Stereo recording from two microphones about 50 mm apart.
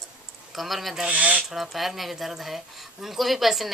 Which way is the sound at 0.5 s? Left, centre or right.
Centre.